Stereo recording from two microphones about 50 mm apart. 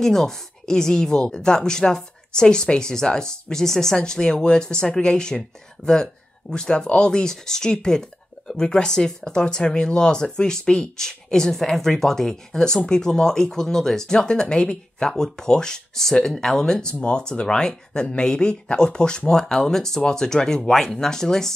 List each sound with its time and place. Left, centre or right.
0.0 s speech: centre
6.5 s speech: centre